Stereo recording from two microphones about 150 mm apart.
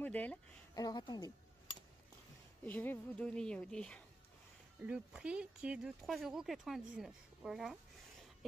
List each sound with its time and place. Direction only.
0.0 s speech: 10° left (ahead or behind)
0.7 s a woman's voice: 25° left (ahead or behind)
2.6 s a woman's voice: 10° left (ahead or behind)
4.8 s speech: 10° right (ahead or behind)